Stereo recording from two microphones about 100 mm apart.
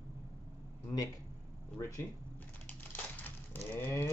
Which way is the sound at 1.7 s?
30° left (ahead or behind).